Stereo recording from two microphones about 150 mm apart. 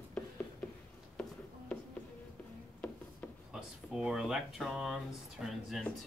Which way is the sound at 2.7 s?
10° left (ahead or behind).